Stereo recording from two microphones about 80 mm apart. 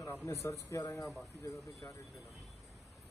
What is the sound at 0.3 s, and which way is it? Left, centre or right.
Speech, left.